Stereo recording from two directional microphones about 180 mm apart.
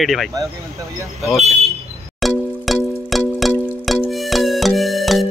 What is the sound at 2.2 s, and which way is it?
Music, centre (ahead or behind).